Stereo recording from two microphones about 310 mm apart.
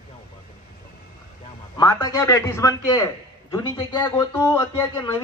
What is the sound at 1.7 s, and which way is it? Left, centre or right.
A man's voice, centre.